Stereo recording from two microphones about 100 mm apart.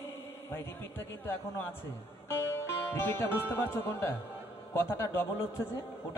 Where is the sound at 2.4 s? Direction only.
25° left (ahead or behind).